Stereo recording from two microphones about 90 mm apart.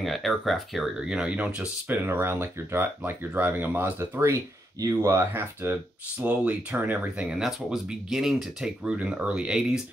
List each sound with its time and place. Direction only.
0.0 s speech: centre (ahead or behind)
1.0 s speech: 10° right (ahead or behind)